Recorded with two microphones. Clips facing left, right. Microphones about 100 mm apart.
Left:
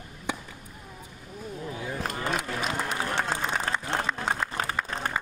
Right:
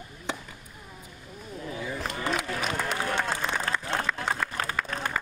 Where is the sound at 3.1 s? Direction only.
25° left (ahead or behind).